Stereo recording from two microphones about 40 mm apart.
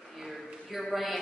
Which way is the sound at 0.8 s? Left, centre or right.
Centre.